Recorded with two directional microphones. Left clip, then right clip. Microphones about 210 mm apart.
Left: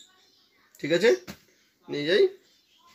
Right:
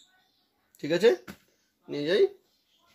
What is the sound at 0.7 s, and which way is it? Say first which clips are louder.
Speech: left 1 dB; 30° right (ahead or behind).